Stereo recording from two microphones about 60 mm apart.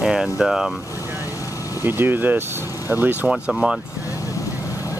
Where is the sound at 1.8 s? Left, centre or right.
Right.